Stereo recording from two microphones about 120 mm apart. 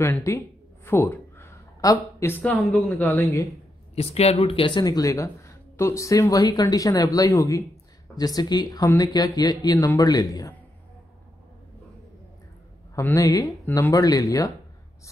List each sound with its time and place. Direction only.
0.0 s speech: 20° left (ahead or behind)
0.8 s a sound: 15° left (ahead or behind)
2.4 s speech: 15° left (ahead or behind)
3.9 s speech: 60° left (ahead or behind)
4.8 s speech: 30° left (ahead or behind)
12.9 s speech: 25° left (ahead or behind)